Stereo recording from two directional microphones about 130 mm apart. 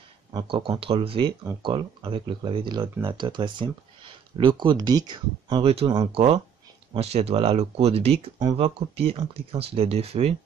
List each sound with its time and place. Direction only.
0.3 s speech: 35° right (ahead or behind)
5.6 s speech: 50° right (ahead or behind)